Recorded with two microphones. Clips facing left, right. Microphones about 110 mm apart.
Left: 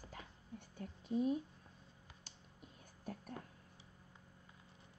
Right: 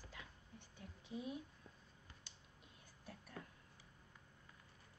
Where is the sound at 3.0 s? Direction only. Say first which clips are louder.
Left 7 dB; 45° left (ahead or behind).